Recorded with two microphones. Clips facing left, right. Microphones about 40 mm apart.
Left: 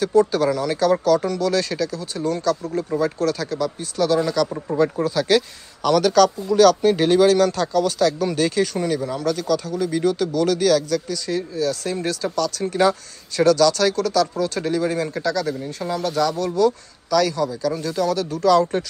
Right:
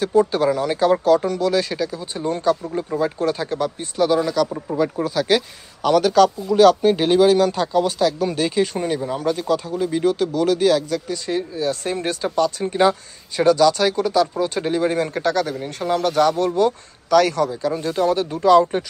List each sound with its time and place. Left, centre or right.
0.0 s a man's voice: centre
2.2 s speech: right
2.7 s a man's voice: centre
4.3 s a man's voice: centre
11.2 s speech: right
17.6 s speech: right